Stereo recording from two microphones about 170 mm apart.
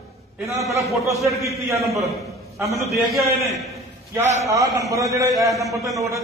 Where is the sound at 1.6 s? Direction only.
15° right (ahead or behind).